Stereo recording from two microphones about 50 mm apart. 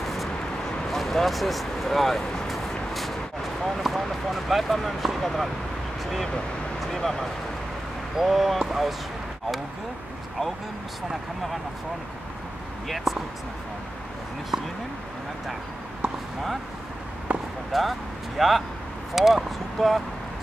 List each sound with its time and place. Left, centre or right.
0.0 s a sound: centre
0.8 s speech: centre
2.9 s a sound: centre
3.6 s speech: centre
12.8 s speech: centre
17.3 s basketball bounce: right
17.7 s speech: centre